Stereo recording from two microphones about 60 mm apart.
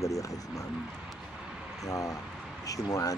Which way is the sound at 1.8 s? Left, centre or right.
Left.